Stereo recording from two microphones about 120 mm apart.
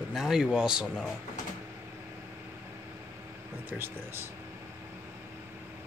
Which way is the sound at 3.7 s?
15° right (ahead or behind).